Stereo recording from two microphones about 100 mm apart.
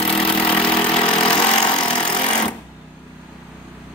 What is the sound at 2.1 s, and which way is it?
Jackhammer, 45° left (ahead or behind).